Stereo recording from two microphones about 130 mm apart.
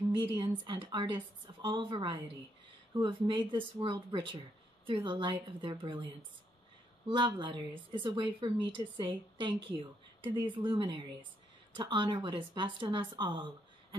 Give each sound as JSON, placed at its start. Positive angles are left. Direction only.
{"t": 0.1, "sound": "a woman's voice", "side_deg": -40}
{"t": 7.1, "sound": "a woman's voice", "side_deg": -40}